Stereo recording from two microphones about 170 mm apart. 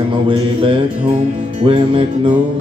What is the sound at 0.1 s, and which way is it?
Mantra, 30° right (ahead or behind).